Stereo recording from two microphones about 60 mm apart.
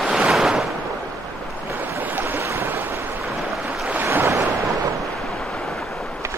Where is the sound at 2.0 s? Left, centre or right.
Right.